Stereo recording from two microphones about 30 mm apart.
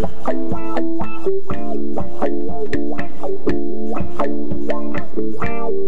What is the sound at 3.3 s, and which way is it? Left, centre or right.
Music, centre.